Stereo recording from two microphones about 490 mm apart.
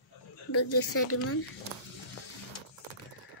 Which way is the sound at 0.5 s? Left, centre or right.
Left.